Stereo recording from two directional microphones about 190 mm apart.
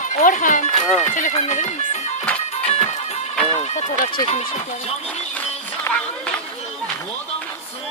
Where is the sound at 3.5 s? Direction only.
35° left (ahead or behind).